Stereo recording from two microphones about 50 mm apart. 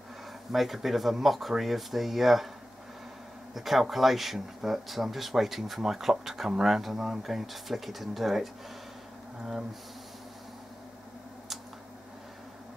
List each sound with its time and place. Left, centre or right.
0.5 s speech: centre
3.5 s speech: centre